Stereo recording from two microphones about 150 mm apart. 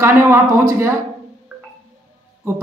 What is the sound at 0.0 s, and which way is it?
Speech, 15° right (ahead or behind).